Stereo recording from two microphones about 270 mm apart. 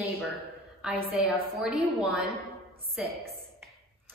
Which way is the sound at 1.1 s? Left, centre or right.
Centre.